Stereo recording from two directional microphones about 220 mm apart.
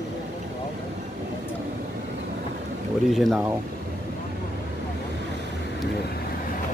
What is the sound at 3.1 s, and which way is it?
Speech, centre (ahead or behind).